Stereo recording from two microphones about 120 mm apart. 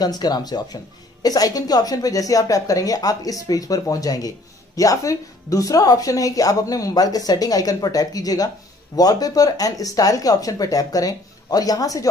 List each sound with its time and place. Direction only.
0.0 s speech: 35° left (ahead or behind)